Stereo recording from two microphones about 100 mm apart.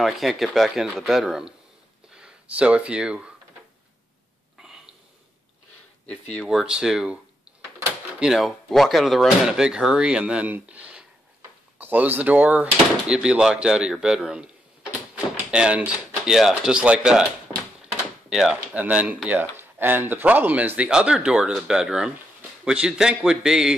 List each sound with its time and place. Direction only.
0.0 s speech: centre (ahead or behind)
4.6 s a sound: 5° right (ahead or behind)
6.4 s speech: 10° right (ahead or behind)
8.2 s speech: 5° right (ahead or behind)
18.3 s speech: 5° right (ahead or behind)